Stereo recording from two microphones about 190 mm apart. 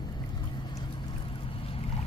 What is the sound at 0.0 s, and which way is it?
Boat, 20° left (ahead or behind).